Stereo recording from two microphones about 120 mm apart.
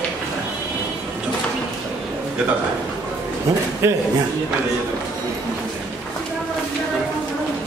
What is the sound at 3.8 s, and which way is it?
Speech, 25° right (ahead or behind).